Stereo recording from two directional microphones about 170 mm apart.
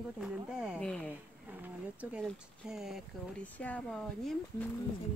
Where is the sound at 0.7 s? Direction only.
5° left (ahead or behind).